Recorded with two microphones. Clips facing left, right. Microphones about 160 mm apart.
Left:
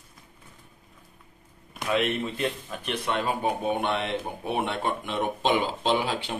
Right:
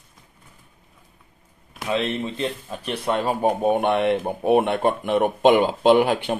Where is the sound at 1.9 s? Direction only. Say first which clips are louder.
Right 2 dB; 25° right (ahead or behind).